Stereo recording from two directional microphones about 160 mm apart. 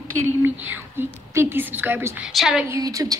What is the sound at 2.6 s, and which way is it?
Speech, 20° right (ahead or behind).